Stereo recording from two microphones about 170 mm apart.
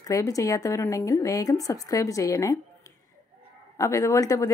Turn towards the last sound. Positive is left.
turn(degrees=20)  # may be behind; listen again after turning